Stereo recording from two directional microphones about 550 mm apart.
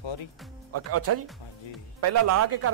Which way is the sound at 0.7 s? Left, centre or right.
Right.